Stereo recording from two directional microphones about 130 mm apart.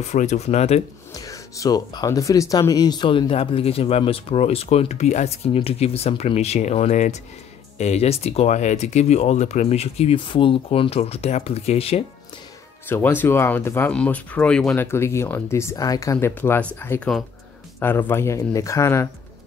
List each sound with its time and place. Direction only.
0.0 s speech: 65° left (ahead or behind)
1.1 s speech: 25° left (ahead or behind); by 12.0 s 50° left (ahead or behind)
12.8 s speech: 15° left (ahead or behind)
14.8 s speech: 20° left (ahead or behind)